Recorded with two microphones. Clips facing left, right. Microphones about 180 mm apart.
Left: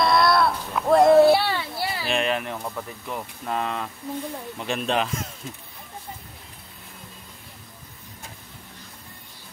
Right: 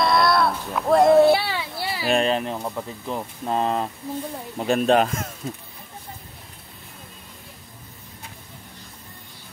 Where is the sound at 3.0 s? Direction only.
30° right (ahead or behind); by 5.3 s 50° right (ahead or behind).